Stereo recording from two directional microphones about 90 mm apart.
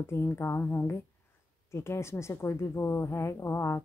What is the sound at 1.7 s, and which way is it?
A woman's voice, 30° left (ahead or behind).